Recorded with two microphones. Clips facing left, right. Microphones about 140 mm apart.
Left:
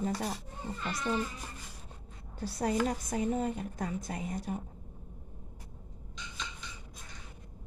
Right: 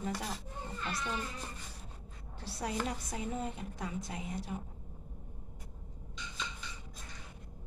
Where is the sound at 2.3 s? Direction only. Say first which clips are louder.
Left 6 dB; 45° left (ahead or behind).